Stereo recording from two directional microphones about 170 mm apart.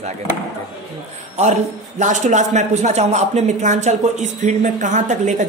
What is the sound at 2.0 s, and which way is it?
Speech, 45° right (ahead or behind).